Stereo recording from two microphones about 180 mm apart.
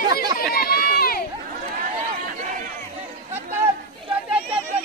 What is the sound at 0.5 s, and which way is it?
Run, 55° left (ahead or behind).